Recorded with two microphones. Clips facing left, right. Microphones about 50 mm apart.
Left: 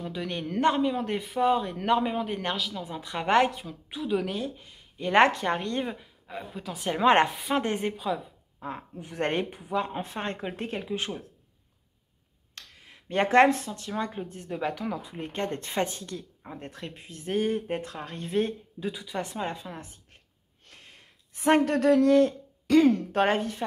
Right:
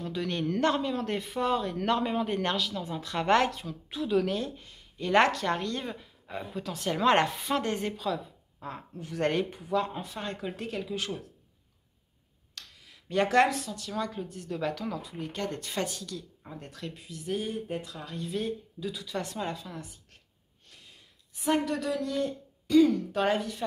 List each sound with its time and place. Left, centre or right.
0.0 s speech: centre
3.0 s speech: centre
4.9 s speech: left
6.2 s a woman's voice: centre
6.8 s a woman's voice: centre
12.5 s speech: left
18.9 s speech: left
20.6 s speech: left